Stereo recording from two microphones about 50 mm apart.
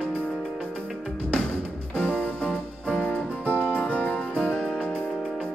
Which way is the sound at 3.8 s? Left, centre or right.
Left.